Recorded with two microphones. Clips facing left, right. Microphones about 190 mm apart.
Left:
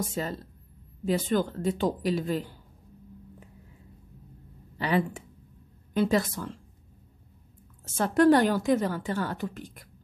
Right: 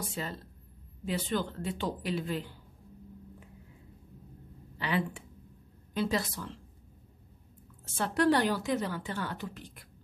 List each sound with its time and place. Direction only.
0.1 s a woman's voice: 45° left (ahead or behind)
4.7 s a woman's voice: 45° left (ahead or behind)
7.8 s a woman's voice: 45° left (ahead or behind)